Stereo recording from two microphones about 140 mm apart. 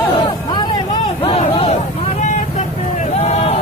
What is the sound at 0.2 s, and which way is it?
Music, 35° left (ahead or behind).